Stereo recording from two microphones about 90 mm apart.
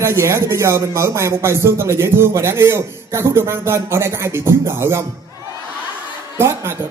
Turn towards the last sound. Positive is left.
turn(degrees=-25)  # may be behind; listen again after turning